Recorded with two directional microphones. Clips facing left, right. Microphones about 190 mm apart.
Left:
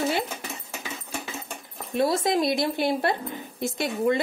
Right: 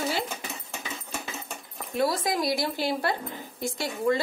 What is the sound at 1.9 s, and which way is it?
A woman's voice, 25° left (ahead or behind).